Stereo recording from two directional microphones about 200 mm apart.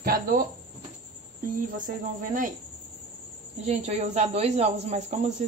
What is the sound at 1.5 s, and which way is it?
Speech, 40° right (ahead or behind).